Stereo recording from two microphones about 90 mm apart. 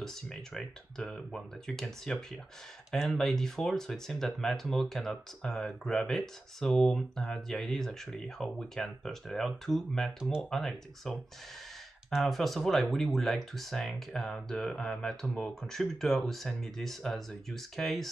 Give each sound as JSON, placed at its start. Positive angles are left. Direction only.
{"t": 0.0, "sound": "speech", "side_deg": 5}